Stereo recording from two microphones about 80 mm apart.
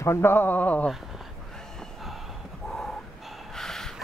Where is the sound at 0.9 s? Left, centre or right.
Centre.